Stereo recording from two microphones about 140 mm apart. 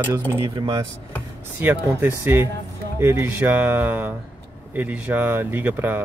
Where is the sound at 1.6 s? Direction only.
15° right (ahead or behind).